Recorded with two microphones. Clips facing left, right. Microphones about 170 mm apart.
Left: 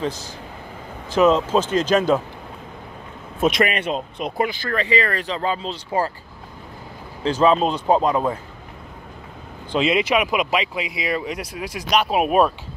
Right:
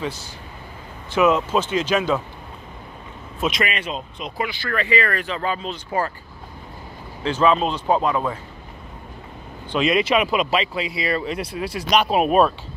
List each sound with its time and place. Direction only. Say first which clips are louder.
1.1 s speech: left 2 dB; 35° left (ahead or behind)
3.3 s speech: left 5 dB; 50° left (ahead or behind)
4.6 s speech: left 1 dB; 30° left (ahead or behind)
7.2 s speech: left 2 dB; 40° left (ahead or behind)
9.8 s speech: even; 25° left (ahead or behind)
10.0 s speech: right 1 dB; 10° left (ahead or behind)